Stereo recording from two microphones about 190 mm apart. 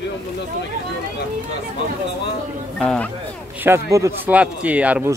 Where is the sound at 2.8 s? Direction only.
5° left (ahead or behind).